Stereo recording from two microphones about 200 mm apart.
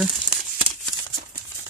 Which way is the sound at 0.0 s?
Centre (ahead or behind).